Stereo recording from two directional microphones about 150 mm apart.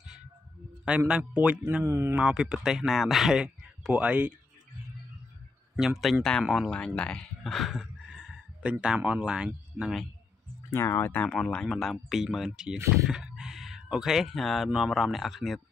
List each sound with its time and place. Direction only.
0.8 s a man's voice: 5° right (ahead or behind)
2.1 s speech: 5° right (ahead or behind)
5.8 s speech: centre (ahead or behind)
10.7 s speech: 15° left (ahead or behind); by 15.6 s centre (ahead or behind)